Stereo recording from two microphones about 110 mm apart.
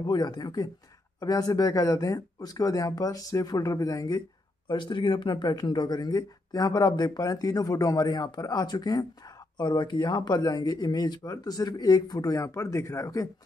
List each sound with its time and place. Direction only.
0.0 s speech: 40° left (ahead or behind)